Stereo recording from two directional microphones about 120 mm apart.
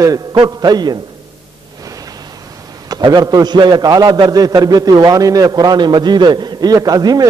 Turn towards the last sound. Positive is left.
turn(degrees=-35)  # may be behind; listen again after turning